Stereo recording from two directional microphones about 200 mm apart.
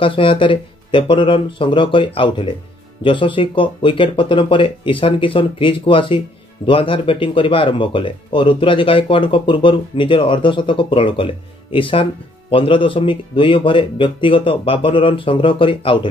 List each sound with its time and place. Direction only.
0.0 s speech: 25° left (ahead or behind)